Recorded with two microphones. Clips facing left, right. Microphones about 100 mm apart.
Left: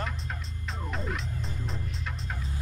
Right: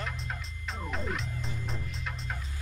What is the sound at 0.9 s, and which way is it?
Music, centre (ahead or behind).